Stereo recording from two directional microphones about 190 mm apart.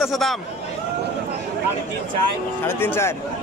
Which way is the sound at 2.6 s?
10° left (ahead or behind).